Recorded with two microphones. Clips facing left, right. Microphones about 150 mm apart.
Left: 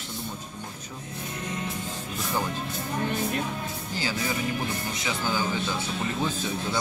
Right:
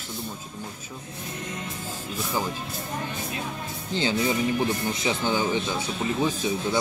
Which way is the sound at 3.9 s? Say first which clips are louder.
Right 6 dB; 25° right (ahead or behind).